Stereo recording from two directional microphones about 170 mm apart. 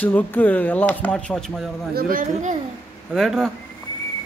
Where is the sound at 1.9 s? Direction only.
55° right (ahead or behind).